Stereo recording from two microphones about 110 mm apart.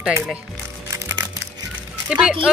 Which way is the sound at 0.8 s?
25° right (ahead or behind).